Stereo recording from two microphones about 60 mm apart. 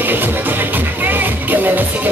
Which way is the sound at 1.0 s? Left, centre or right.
Right.